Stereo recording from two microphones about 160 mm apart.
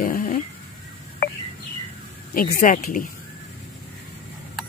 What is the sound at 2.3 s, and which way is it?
Speech, 60° left (ahead or behind).